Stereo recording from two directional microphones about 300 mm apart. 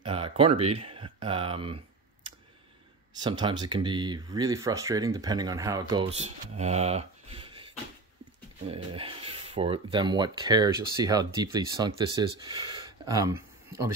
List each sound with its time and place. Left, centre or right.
0.0 s speech: centre
3.2 s speech: centre
8.6 s speech: centre